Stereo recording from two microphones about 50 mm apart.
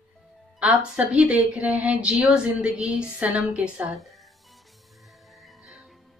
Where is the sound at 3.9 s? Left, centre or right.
Centre.